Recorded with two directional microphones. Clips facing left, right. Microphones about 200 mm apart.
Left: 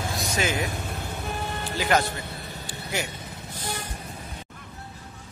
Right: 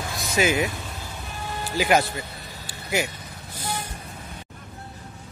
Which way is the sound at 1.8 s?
10° right (ahead or behind).